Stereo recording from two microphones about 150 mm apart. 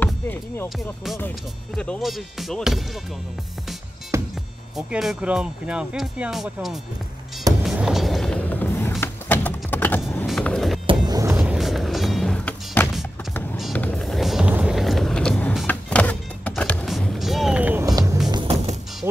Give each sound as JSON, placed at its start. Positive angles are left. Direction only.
{"t": 0.0, "sound": "speech", "side_deg": 10}
{"t": 1.8, "sound": "speech", "side_deg": 5}
{"t": 4.1, "sound": "music", "side_deg": -20}
{"t": 4.7, "sound": "speech", "side_deg": -5}
{"t": 7.6, "sound": "music", "side_deg": -5}
{"t": 9.0, "sound": "a sound", "side_deg": 10}
{"t": 10.2, "sound": "music", "side_deg": 5}
{"t": 10.9, "sound": "vehicle", "side_deg": -25}
{"t": 11.3, "sound": "music", "side_deg": -5}
{"t": 17.8, "sound": "music", "side_deg": -25}